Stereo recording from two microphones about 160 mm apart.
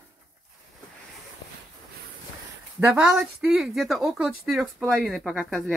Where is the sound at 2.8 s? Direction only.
5° right (ahead or behind).